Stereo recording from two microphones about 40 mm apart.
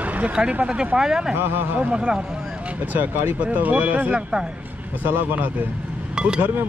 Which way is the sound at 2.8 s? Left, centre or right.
Right.